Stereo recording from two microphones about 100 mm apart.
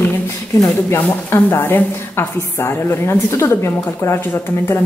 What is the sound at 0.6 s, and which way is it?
Speech, 25° left (ahead or behind).